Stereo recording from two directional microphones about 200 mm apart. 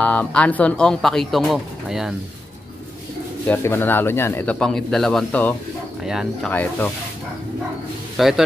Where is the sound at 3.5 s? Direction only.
10° left (ahead or behind).